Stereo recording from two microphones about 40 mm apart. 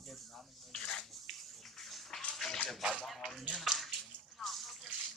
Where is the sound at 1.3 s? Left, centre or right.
Centre.